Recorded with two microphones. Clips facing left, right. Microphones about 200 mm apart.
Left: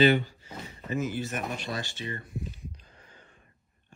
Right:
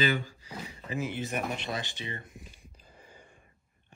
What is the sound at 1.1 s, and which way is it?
Speech, 15° right (ahead or behind).